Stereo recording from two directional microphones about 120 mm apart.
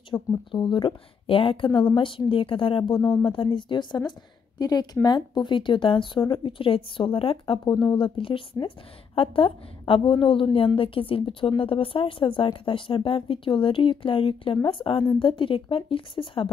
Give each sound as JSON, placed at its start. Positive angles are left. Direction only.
{"t": 0.1, "sound": "speech", "side_deg": 40}